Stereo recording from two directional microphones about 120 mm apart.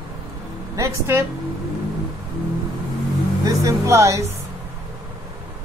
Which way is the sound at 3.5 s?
25° right (ahead or behind).